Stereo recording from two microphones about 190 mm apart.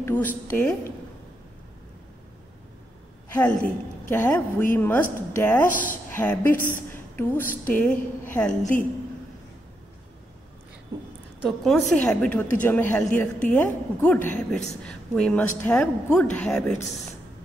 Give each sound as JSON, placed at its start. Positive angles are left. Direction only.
{"t": 0.0, "sound": "a woman's voice", "side_deg": 10}
{"t": 3.3, "sound": "a woman's voice", "side_deg": 10}
{"t": 5.7, "sound": "speech", "side_deg": 45}
{"t": 6.0, "sound": "a woman's voice", "side_deg": 10}
{"t": 6.9, "sound": "a sound", "side_deg": 10}
{"t": 7.6, "sound": "a woman's voice", "side_deg": 10}
{"t": 11.4, "sound": "a woman's voice", "side_deg": 0}